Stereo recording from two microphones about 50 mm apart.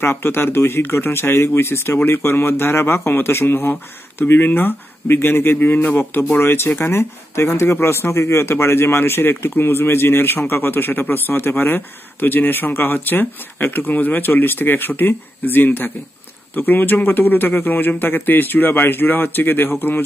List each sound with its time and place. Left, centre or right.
0.0 s speech: left
2.0 s speech: left
6.3 s a man's voice: left